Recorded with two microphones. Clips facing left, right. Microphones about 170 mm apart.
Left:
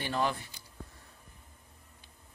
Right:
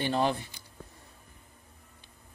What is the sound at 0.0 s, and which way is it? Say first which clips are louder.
Speech: right 4 dB; 25° right (ahead or behind).